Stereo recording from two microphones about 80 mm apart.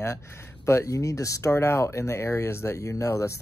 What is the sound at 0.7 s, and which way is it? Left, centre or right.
Speech, left.